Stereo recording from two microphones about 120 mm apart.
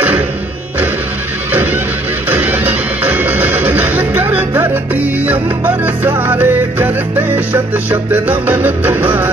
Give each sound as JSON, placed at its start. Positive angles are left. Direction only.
{"t": 1.5, "sound": "music", "side_deg": -15}